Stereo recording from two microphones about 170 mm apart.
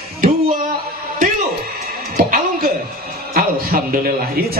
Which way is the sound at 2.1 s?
55° right (ahead or behind).